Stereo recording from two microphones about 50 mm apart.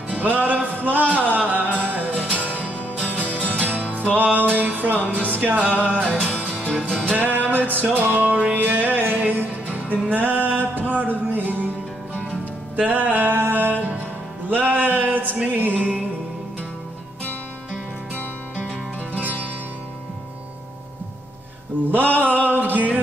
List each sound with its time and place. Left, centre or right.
0.1 s music: right
3.5 s music: right
6.5 s music: centre
7.2 s music: right
12.7 s music: right
14.5 s a sound: right
21.9 s music: right